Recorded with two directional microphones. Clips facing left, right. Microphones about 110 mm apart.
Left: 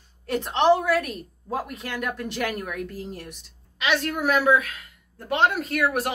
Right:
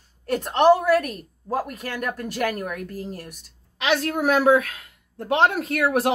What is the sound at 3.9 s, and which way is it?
Speech, 35° right (ahead or behind).